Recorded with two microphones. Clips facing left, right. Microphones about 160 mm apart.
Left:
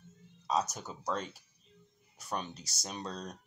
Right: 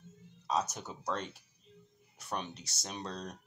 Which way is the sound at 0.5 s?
Centre (ahead or behind).